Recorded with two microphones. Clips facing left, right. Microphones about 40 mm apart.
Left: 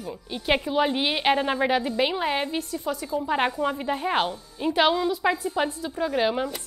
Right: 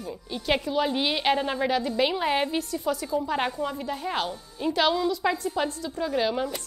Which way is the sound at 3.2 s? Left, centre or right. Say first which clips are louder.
Left 3 dB; centre.